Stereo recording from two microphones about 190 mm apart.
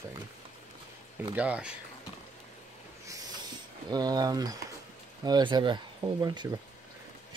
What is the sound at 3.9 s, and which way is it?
Speech, 20° right (ahead or behind).